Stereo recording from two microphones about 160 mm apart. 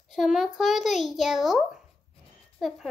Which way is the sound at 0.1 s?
Centre (ahead or behind).